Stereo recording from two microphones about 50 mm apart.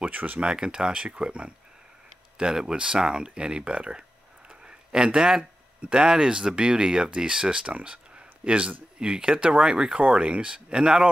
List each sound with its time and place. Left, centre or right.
0.1 s speech: right
0.4 s speech: centre
4.6 s a sound: centre
6.0 s speech: centre